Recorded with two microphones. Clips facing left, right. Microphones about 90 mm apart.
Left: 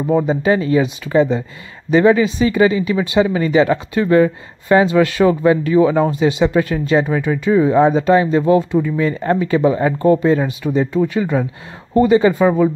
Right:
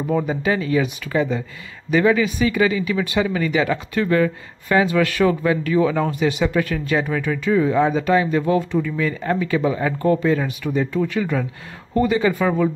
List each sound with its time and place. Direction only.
0.1 s speech: 30° left (ahead or behind)